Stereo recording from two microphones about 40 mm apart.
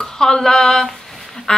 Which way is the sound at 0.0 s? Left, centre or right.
Centre.